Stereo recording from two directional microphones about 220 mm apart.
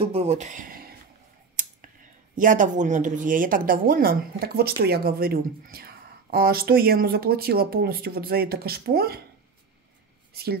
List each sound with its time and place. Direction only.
0.0 s a sound: 30° right (ahead or behind)
1.6 s clicking: 40° right (ahead or behind)
2.3 s speech: 35° right (ahead or behind)
10.3 s speech: 45° right (ahead or behind)